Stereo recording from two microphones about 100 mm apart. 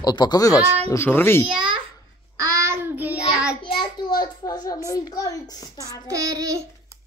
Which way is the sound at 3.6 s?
45° left (ahead or behind).